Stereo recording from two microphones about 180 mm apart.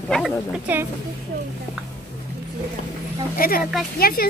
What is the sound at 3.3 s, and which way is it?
Speech, 55° left (ahead or behind).